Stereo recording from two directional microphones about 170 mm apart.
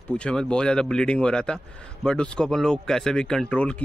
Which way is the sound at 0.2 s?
5° left (ahead or behind).